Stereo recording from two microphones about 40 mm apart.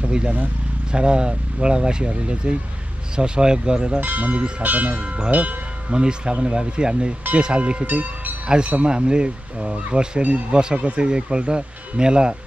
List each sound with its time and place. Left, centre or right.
0.9 s speech: right
4.0 s speech: right
4.9 s speech: right
5.9 s speech: right
7.9 s speech: right
8.5 s speech: right